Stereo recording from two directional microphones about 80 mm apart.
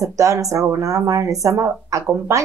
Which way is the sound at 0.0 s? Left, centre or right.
Right.